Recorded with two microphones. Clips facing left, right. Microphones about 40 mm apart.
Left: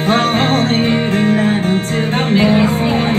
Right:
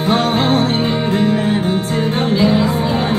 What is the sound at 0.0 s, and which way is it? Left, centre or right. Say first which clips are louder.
Music: left 1 dB; left.